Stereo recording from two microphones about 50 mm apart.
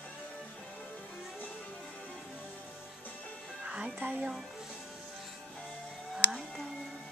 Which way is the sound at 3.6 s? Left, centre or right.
Right.